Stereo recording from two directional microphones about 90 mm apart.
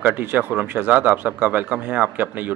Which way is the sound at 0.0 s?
20° right (ahead or behind).